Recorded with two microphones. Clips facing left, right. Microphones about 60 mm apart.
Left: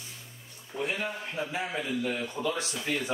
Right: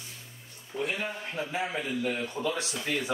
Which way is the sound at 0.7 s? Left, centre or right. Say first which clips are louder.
Even; centre.